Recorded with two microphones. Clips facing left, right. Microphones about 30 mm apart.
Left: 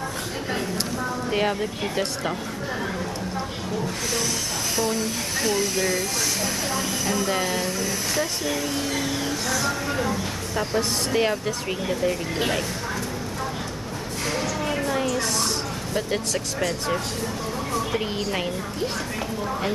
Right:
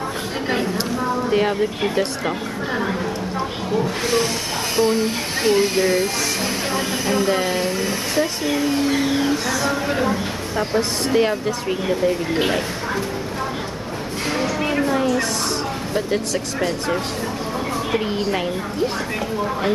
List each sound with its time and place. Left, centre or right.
1.3 s a woman's voice: centre
3.7 s speech: right
7.2 s speech: right
10.5 s speech: centre
11.1 s speech: centre
11.9 s a woman's voice: centre
14.3 s a sound: right
14.9 s a sound: centre
17.9 s a woman's voice: centre